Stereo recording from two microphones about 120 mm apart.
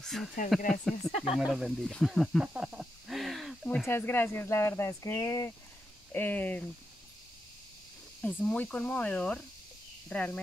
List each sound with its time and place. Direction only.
0.0 s speech: 5° left (ahead or behind)
2.4 s cricket: 10° right (ahead or behind)
3.8 s speech: 20° left (ahead or behind)
6.1 s speech: 15° left (ahead or behind)
8.2 s speech: 15° left (ahead or behind)